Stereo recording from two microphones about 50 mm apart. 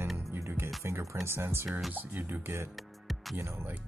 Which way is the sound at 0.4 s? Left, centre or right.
Right.